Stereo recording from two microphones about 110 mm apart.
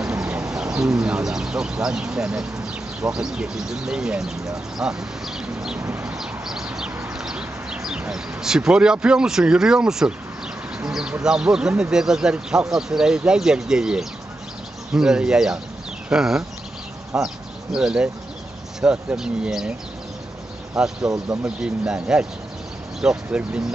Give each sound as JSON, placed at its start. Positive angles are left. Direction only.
{"t": 0.5, "sound": "speech", "side_deg": -5}
{"t": 5.8, "sound": "a sound", "side_deg": -20}
{"t": 6.1, "sound": "a sound", "side_deg": -5}
{"t": 7.2, "sound": "speech", "side_deg": -5}
{"t": 21.0, "sound": "speech", "side_deg": -30}
{"t": 21.5, "sound": "speech", "side_deg": -10}